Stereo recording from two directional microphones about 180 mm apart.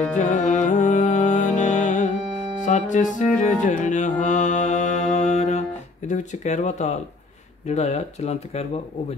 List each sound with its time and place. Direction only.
0.1 s music: 45° left (ahead or behind)
3.6 s mantra: 45° left (ahead or behind)
6.0 s speech: 45° left (ahead or behind)